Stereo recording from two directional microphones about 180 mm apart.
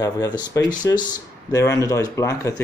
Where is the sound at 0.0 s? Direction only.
20° left (ahead or behind).